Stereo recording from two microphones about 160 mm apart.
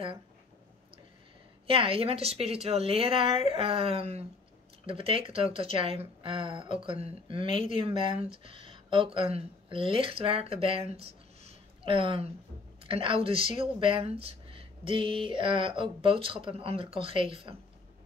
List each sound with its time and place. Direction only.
1.7 s speech: 35° right (ahead or behind)